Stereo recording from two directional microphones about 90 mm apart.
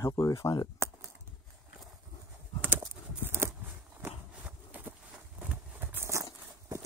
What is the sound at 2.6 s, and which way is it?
Horse, 20° right (ahead or behind).